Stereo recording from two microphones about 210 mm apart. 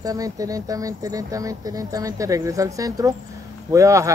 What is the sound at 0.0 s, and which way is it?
Speech, 15° right (ahead or behind).